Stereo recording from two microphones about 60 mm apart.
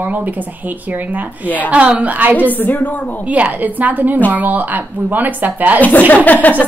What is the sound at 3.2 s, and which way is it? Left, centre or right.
A woman's voice, right.